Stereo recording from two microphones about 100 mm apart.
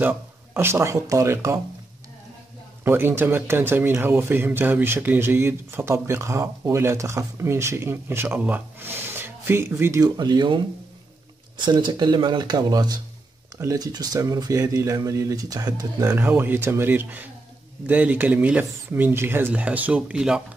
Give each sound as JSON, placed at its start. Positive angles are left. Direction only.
{"t": 0.0, "sound": "speech", "side_deg": -20}
{"t": 2.8, "sound": "speech", "side_deg": -25}
{"t": 10.0, "sound": "speech", "side_deg": -45}
{"t": 16.2, "sound": "speech", "side_deg": -20}